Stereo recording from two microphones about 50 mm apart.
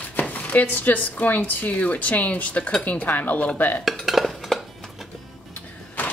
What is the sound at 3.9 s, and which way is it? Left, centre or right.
Dishes, centre.